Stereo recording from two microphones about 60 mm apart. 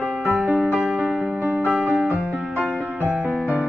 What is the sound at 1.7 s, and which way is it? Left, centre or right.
Music, centre.